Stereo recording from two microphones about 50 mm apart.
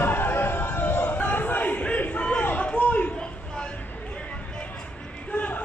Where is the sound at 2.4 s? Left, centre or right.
Left.